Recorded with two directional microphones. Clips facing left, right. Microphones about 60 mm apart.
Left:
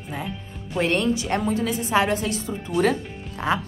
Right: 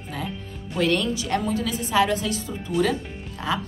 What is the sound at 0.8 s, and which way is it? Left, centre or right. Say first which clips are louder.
A woman's voice: left 1 dB; left.